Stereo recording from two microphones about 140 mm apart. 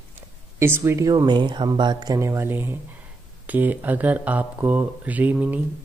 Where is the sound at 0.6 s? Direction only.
15° right (ahead or behind).